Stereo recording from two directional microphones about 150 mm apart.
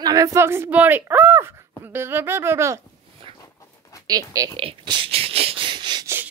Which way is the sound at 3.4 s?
20° left (ahead or behind).